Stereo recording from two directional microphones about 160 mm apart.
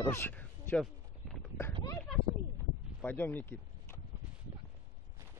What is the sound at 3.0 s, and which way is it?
Speech, 10° left (ahead or behind).